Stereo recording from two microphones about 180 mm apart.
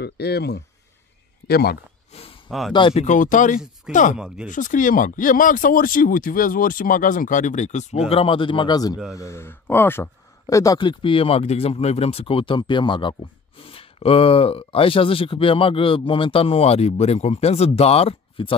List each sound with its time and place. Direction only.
0.0 s speech: 65° left (ahead or behind)
2.7 s speech: 30° left (ahead or behind)